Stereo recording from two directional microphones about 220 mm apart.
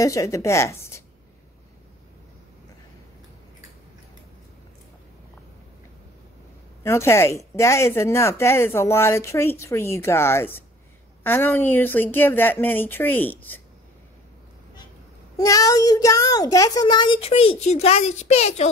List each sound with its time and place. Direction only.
0.0 s speech: 15° left (ahead or behind)
6.8 s speech: 10° left (ahead or behind)
15.3 s a child's voice: 15° left (ahead or behind)